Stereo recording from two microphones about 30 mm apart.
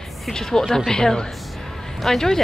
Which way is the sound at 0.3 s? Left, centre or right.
Centre.